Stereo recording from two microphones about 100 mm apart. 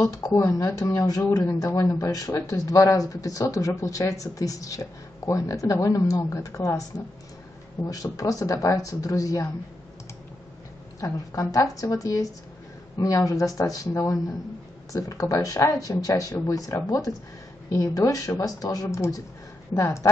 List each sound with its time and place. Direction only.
0.0 s speech: 35° left (ahead or behind)
7.9 s speech: 35° left (ahead or behind)
11.0 s speech: 35° left (ahead or behind)